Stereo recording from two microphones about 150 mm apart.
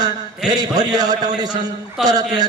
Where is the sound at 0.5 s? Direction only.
25° right (ahead or behind).